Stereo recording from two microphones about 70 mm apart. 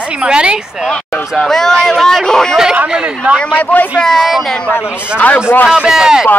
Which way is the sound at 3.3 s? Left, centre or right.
Centre.